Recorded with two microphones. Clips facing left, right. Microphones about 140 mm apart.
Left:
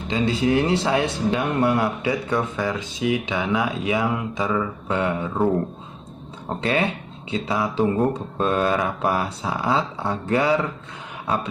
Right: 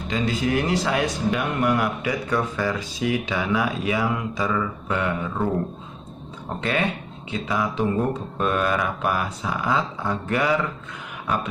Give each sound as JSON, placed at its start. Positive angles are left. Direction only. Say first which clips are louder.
{"t": 0.1, "sound": "speech", "louder": "left 3 dB", "side_deg": 25}
{"t": 6.6, "sound": "speech", "louder": "left 2 dB", "side_deg": 30}